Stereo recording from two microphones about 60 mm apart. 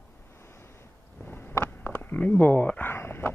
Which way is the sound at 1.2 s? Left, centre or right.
Left.